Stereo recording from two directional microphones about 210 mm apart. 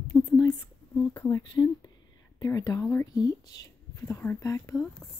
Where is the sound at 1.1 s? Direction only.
15° left (ahead or behind).